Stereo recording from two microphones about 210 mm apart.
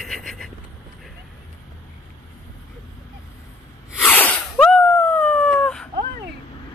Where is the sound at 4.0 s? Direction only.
10° left (ahead or behind).